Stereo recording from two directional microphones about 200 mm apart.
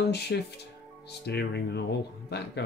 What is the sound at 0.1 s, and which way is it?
Speech, 55° left (ahead or behind).